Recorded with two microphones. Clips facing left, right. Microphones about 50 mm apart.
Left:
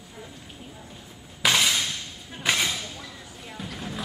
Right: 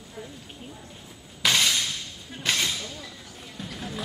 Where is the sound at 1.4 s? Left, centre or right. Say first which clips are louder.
Left 1 dB; centre.